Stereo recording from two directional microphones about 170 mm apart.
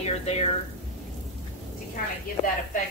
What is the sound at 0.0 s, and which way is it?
Speech, 40° left (ahead or behind).